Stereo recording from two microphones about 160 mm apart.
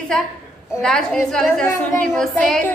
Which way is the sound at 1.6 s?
20° left (ahead or behind).